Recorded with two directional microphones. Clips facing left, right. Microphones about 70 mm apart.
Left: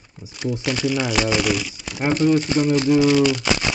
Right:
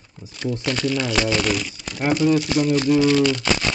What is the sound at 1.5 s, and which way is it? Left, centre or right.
Speech, centre.